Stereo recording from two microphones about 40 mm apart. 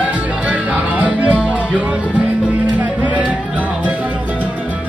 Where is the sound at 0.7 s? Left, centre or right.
Right.